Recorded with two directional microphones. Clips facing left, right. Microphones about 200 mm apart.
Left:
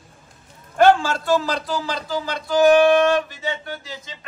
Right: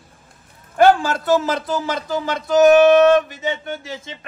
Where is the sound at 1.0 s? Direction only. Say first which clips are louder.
Right 2 dB; 20° right (ahead or behind).